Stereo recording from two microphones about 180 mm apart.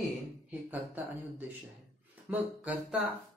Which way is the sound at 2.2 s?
10° right (ahead or behind).